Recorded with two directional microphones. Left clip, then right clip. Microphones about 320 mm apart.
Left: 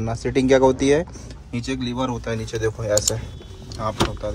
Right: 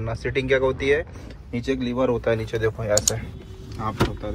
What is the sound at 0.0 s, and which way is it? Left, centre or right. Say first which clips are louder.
Speech: left 4 dB; centre.